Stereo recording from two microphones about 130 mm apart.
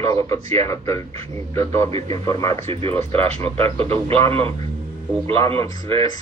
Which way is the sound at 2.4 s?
20° left (ahead or behind).